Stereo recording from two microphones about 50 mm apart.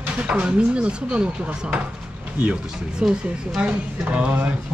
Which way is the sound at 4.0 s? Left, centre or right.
Right.